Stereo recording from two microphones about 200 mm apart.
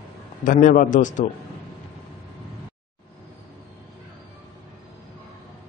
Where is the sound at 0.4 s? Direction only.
40° left (ahead or behind).